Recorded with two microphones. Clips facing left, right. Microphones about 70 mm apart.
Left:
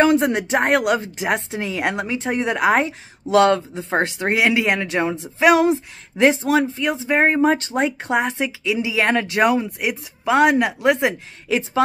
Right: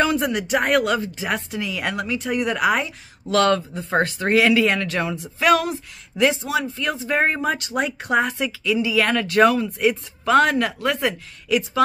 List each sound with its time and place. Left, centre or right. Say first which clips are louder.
0.0 s speech: left 4 dB; left
6.8 s speech: left 3 dB; left